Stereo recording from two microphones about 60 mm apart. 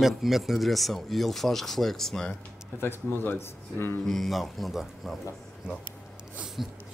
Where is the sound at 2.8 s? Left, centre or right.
Left.